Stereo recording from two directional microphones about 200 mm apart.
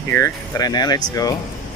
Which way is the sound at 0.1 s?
15° left (ahead or behind).